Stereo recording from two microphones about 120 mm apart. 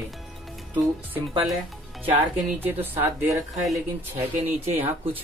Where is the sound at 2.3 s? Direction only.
15° right (ahead or behind).